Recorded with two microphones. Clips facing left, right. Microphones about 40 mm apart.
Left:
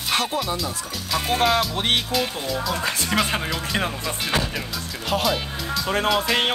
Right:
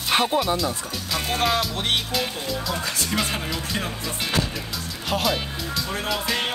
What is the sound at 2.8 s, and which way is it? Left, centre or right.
Speech, left.